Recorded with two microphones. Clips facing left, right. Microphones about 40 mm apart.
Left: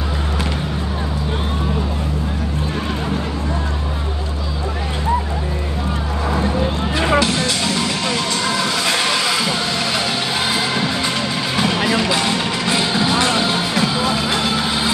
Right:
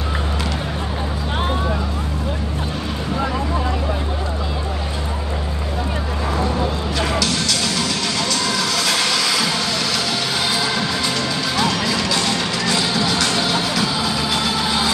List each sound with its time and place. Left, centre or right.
7.0 s music: left
11.5 s music: left